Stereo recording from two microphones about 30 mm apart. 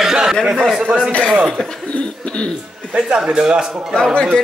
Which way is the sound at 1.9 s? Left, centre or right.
Left.